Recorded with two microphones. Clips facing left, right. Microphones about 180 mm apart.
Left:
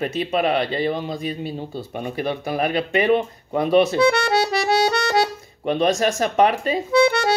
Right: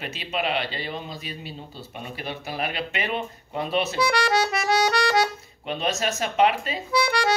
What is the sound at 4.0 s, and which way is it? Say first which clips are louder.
Accordion: left 5 dB; 25° left (ahead or behind).